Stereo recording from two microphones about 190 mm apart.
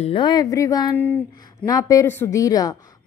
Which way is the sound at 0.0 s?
25° left (ahead or behind).